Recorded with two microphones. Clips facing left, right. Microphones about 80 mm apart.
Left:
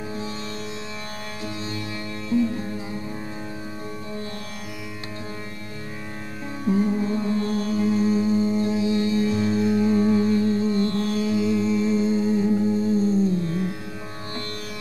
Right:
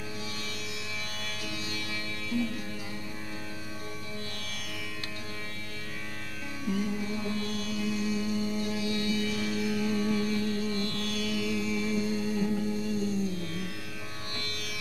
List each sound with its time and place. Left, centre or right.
2.2 s music: left
6.6 s music: left